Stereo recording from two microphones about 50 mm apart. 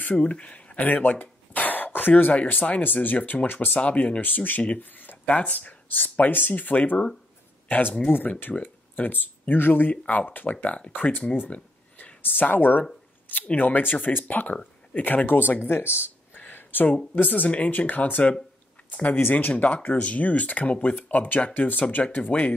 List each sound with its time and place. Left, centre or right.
0.0 s speech: left
4.2 s speech: left
11.5 s a sound: left
12.2 s speech: left
16.3 s a sound: left
17.1 s speech: left
19.5 s speech: left